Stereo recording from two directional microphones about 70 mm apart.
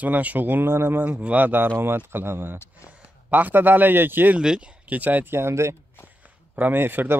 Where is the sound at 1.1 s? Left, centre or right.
Centre.